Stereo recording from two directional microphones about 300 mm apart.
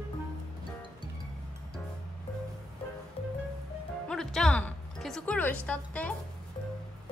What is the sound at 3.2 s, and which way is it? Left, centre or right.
Music, centre.